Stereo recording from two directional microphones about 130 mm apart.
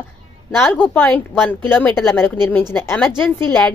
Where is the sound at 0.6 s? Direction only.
15° left (ahead or behind).